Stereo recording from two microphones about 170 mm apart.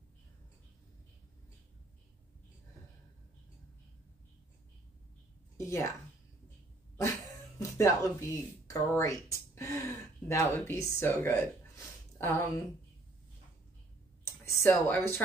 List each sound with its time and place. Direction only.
5.7 s a woman's voice: 15° left (ahead or behind)
7.0 s speech: 20° left (ahead or behind)
14.2 s speech: 15° left (ahead or behind)